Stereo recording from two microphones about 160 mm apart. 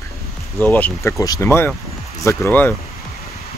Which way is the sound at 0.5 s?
15° left (ahead or behind).